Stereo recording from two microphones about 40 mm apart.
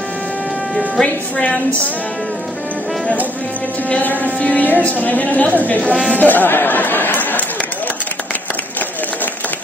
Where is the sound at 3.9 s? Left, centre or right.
Left.